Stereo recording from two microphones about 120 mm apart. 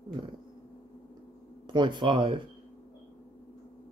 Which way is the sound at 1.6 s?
40° right (ahead or behind).